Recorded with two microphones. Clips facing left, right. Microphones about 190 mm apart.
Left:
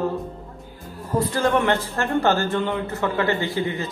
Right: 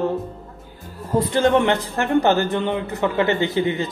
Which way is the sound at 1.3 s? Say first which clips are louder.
Right 4 dB; 20° right (ahead or behind).